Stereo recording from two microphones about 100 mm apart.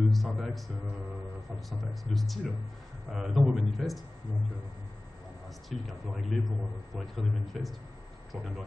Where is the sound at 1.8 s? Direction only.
Centre (ahead or behind).